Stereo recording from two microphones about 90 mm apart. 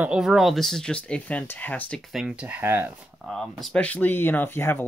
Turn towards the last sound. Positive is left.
turn(degrees=25)  # may be behind; listen again after turning